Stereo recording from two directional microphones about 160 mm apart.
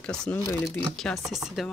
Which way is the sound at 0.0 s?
5° left (ahead or behind).